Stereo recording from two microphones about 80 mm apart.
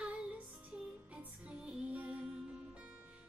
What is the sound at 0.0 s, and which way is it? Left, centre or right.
Music, centre.